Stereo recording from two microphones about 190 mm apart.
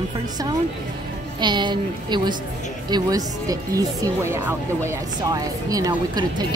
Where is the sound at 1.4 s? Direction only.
25° right (ahead or behind).